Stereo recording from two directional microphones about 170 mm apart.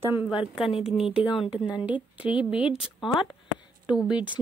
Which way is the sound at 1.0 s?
5° right (ahead or behind).